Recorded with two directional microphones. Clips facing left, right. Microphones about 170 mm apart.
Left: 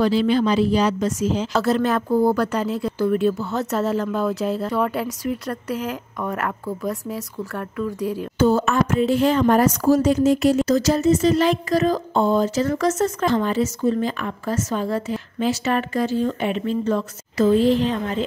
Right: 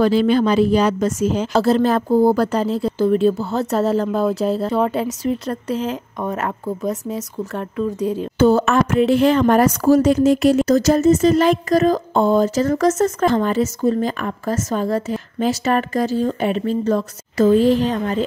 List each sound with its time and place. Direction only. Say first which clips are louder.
0.0 s speech: right 3 dB; 50° right (ahead or behind)
1.5 s speech: right 5 dB; 30° right (ahead or behind)
8.4 s speech: right 3 dB; 65° right (ahead or behind); by 18.2 s 40° right (ahead or behind)